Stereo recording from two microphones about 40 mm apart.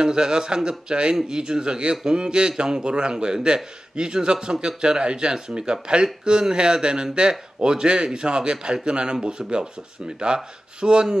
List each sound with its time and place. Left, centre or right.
0.0 s a man's voice: centre